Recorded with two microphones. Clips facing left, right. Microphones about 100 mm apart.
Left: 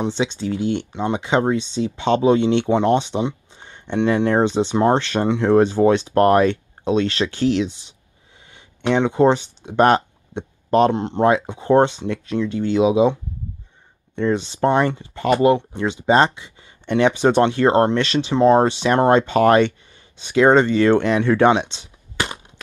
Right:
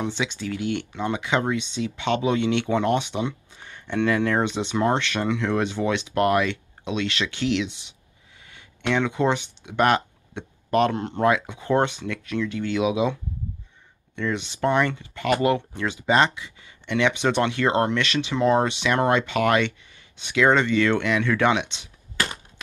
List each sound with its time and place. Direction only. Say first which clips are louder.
0.0 s speech: left 5 dB; 30° left (ahead or behind)